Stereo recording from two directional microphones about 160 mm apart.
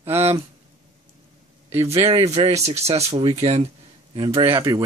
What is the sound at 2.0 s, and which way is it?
Speech, 40° right (ahead or behind).